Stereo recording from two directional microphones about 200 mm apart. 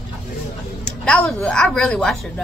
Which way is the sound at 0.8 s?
5° left (ahead or behind).